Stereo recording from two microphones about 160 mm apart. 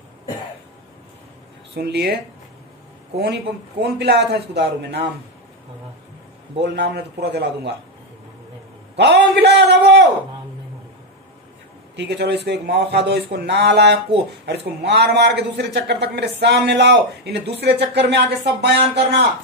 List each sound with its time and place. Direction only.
1.8 s a man's voice: 90° right
3.2 s a man's voice: 90° right
6.6 s a man's voice: 90° right
8.9 s a man's voice: 90° right
11.9 s a man's voice: 90° right